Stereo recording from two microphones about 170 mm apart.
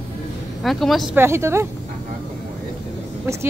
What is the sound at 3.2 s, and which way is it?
Speech, 15° right (ahead or behind).